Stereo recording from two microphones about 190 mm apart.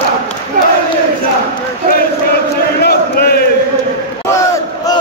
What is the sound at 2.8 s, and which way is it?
Chant, 55° left (ahead or behind).